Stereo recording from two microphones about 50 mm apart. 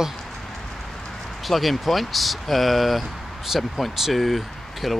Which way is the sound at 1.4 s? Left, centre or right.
Centre.